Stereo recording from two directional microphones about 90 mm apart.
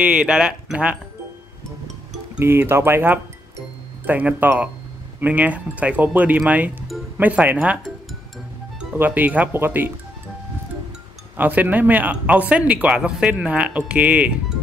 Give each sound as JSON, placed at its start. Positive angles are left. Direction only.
{"t": 0.0, "sound": "speech", "side_deg": -10}
{"t": 2.3, "sound": "speech", "side_deg": -25}
{"t": 8.9, "sound": "speech", "side_deg": -20}
{"t": 11.3, "sound": "speech", "side_deg": -20}